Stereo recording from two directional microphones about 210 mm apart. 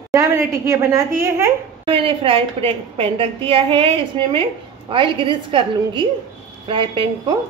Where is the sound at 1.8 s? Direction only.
25° right (ahead or behind).